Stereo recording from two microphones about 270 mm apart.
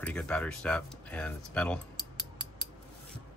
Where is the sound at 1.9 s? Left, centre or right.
Centre.